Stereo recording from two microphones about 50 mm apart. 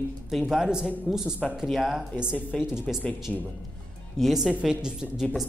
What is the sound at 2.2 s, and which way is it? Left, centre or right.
Speech, centre.